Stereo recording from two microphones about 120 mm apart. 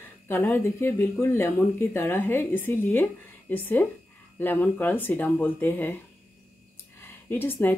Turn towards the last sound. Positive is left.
turn(degrees=20)  # may be behind; listen again after turning